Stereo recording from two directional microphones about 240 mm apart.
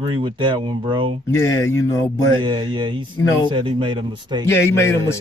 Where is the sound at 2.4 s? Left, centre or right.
Centre.